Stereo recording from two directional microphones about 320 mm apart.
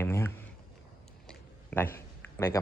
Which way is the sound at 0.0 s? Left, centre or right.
Centre.